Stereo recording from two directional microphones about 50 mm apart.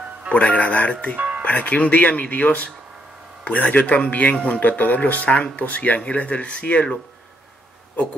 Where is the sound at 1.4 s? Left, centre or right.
Left.